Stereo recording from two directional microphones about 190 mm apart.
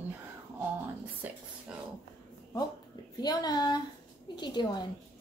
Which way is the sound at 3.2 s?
20° left (ahead or behind).